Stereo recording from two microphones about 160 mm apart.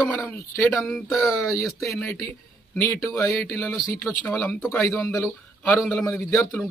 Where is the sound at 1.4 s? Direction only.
20° left (ahead or behind).